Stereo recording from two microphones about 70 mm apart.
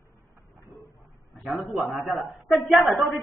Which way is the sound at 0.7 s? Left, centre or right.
Left.